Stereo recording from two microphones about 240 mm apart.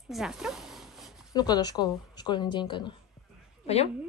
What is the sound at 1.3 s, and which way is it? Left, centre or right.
A woman's voice, centre.